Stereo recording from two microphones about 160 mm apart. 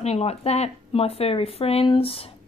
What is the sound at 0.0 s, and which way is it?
Speech, 40° left (ahead or behind).